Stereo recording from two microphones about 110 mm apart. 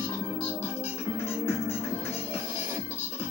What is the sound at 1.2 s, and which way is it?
Music, 20° left (ahead or behind).